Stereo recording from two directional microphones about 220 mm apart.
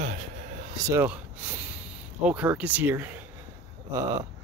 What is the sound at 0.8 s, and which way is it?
Speech, 10° right (ahead or behind).